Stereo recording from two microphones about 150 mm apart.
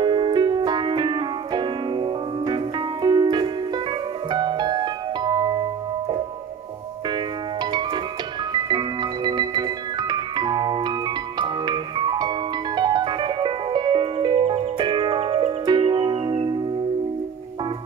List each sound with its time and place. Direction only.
0.0 s music: 30° right (ahead or behind)
4.3 s piano: 30° right (ahead or behind)
7.1 s music: 30° right (ahead or behind)